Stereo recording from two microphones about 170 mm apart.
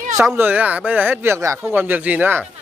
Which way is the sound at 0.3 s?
10° right (ahead or behind).